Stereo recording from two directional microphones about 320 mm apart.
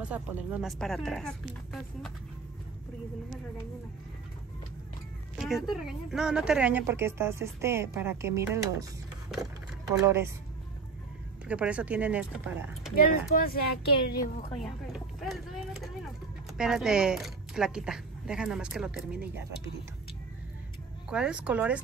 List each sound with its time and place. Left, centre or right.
0.0 s speech: centre
5.4 s speech: centre
9.8 s speech: centre
11.4 s speech: centre
12.9 s speech: left
14.6 s speech: centre
21.1 s speech: centre